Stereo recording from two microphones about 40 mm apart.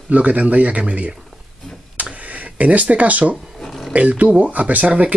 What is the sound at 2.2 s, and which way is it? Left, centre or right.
Speech, right.